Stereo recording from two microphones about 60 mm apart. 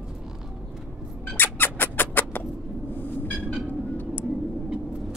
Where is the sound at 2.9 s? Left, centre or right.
Left.